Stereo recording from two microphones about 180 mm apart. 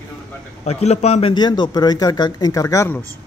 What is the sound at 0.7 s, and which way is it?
A man's voice, 40° left (ahead or behind).